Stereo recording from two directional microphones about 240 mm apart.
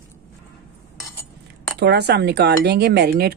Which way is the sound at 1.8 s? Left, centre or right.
Right.